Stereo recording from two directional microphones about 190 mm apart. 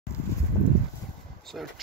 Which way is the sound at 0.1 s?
15° left (ahead or behind).